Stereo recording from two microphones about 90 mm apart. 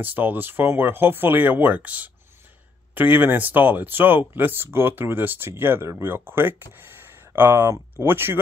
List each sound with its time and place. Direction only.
0.0 s speech: 20° right (ahead or behind)